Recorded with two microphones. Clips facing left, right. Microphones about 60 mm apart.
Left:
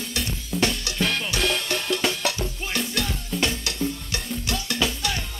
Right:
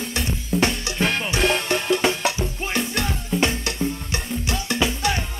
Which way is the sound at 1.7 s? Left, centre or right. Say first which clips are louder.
Right 5 dB; centre.